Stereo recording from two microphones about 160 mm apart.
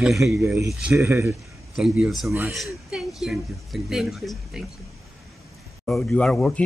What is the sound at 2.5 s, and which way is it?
A woman's voice, centre (ahead or behind).